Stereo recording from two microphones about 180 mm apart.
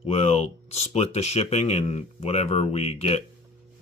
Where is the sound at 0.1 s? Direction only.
35° left (ahead or behind).